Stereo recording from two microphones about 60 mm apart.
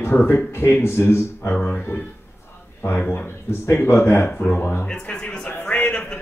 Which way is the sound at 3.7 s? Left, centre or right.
Left.